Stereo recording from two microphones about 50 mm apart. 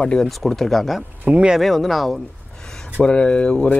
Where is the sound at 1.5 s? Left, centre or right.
Centre.